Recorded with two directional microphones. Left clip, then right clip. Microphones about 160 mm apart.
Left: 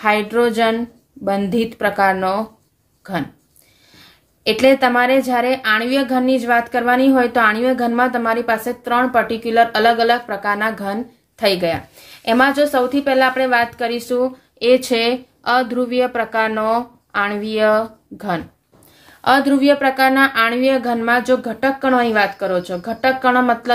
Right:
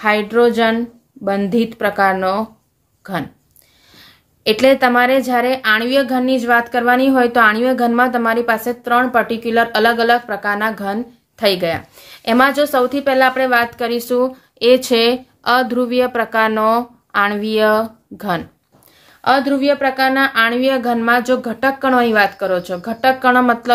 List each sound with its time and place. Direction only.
0.0 s a woman's voice: 25° right (ahead or behind)
3.0 s a sound: 30° right (ahead or behind)
3.9 s a woman's voice: 30° right (ahead or behind)
19.2 s a woman's voice: 15° right (ahead or behind); by 23.7 s 30° right (ahead or behind)